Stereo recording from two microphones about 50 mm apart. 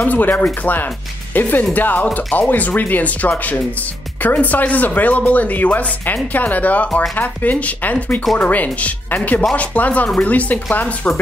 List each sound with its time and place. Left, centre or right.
0.0 s speech: left